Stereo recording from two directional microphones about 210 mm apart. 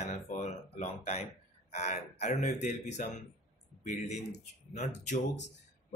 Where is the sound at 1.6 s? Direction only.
35° left (ahead or behind).